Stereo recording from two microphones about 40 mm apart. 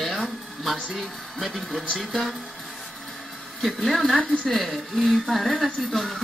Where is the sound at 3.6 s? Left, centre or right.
Centre.